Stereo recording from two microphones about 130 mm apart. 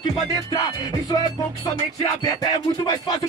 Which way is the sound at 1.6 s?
30° left (ahead or behind).